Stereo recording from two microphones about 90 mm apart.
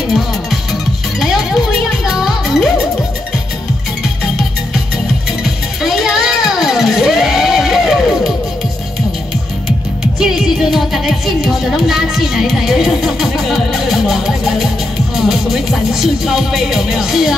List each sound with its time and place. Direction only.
1.2 s music: centre (ahead or behind)
5.8 s music: centre (ahead or behind)
10.1 s music: 5° right (ahead or behind)
15.1 s speech: 5° right (ahead or behind)